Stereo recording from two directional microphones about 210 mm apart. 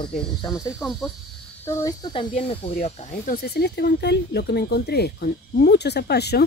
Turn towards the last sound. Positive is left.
turn(degrees=50)  # may be behind; listen again after turning